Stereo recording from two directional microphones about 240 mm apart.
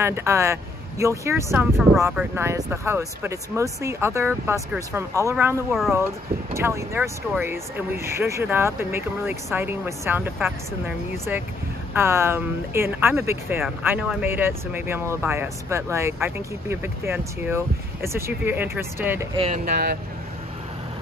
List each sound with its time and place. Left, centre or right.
0.0 s speech: centre
11.9 s speech: centre
19.3 s speech: right